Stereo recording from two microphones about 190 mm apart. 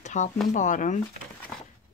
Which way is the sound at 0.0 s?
40° left (ahead or behind).